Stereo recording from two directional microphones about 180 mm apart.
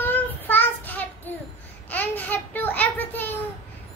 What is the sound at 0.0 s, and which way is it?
Child singing, 10° left (ahead or behind).